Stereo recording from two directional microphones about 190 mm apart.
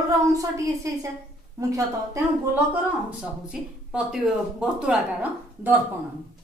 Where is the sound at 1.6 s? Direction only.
15° right (ahead or behind).